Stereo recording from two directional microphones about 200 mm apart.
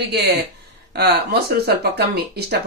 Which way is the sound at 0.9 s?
55° right (ahead or behind).